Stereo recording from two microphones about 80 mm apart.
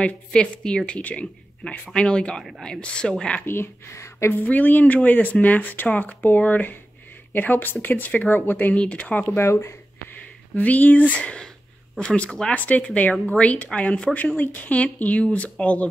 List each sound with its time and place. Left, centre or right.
0.0 s a woman's voice: centre
3.4 s speech: left
4.3 s a woman's voice: left
9.3 s speech: left
10.5 s a woman's voice: left